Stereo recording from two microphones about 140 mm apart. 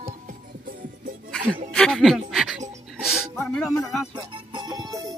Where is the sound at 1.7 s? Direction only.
5° left (ahead or behind).